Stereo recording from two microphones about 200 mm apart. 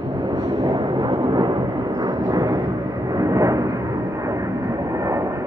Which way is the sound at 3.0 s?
15° right (ahead or behind).